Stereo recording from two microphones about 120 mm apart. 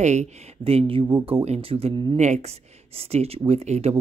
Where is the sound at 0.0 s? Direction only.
75° right (ahead or behind); by 2.1 s 50° right (ahead or behind).